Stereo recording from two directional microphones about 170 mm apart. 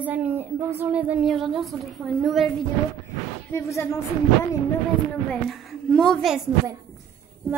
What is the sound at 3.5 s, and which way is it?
Speech, 15° left (ahead or behind).